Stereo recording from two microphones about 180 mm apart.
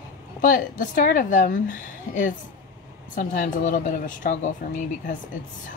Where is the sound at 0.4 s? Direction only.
50° left (ahead or behind).